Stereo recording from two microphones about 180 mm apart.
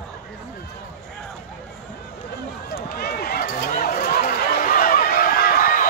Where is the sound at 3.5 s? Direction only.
50° left (ahead or behind).